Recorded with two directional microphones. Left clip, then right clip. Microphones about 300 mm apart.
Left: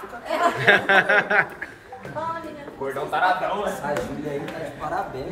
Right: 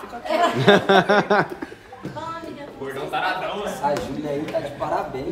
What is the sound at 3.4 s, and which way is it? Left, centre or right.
Speech, centre.